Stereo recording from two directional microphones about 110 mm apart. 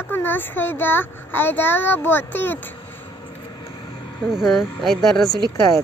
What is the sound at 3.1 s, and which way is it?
Vehicle, 40° left (ahead or behind).